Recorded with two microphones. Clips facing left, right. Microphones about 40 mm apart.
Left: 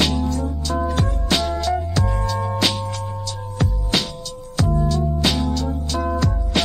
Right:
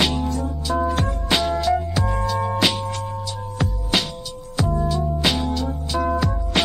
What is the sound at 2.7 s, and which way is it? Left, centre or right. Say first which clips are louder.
Music: right 1 dB; right.